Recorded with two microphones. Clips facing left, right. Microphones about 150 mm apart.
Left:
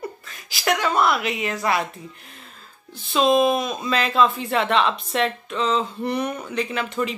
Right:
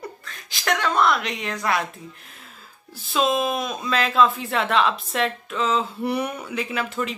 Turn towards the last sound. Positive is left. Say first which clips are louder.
# left 2 dB
turn(degrees=-5)  # may be behind; listen again after turning